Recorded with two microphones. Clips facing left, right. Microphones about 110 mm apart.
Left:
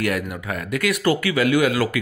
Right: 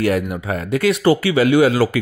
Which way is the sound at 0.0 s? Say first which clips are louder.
Right 5 dB; 30° right (ahead or behind).